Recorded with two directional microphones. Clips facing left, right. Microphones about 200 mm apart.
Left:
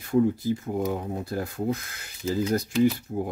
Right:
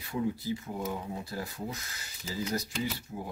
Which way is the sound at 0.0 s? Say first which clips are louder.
Left 10 dB; 50° left (ahead or behind).